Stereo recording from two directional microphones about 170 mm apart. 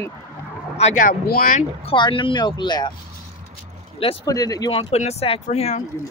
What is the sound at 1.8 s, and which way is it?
Speech, 30° left (ahead or behind).